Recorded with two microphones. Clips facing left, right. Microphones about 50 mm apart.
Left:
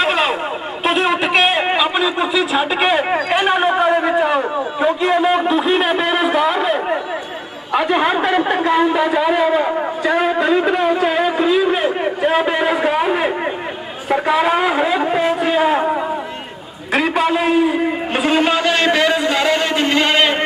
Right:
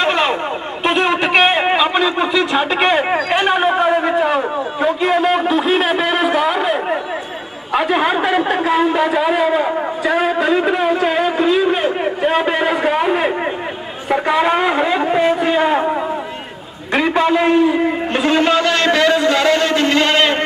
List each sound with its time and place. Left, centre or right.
0.0 s a sound: centre
7.7 s a man's voice: centre
18.1 s a man's voice: centre